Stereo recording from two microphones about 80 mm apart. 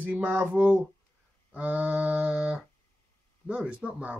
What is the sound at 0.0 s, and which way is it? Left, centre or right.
Speech, right.